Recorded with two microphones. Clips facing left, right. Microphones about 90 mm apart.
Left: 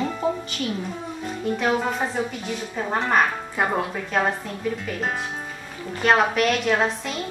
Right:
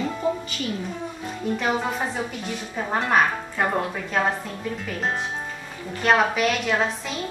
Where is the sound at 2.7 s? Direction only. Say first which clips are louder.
Even; centre (ahead or behind).